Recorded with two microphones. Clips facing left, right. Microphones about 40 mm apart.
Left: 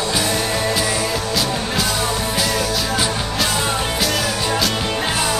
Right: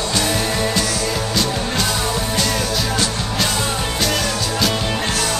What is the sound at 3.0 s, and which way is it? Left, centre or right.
Music, centre.